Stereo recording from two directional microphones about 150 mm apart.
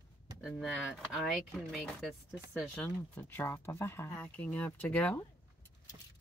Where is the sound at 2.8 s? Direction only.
10° left (ahead or behind).